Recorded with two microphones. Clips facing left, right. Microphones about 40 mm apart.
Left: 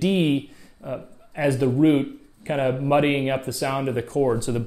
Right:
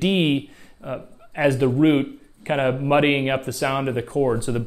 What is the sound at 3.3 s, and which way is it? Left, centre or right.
Speech, right.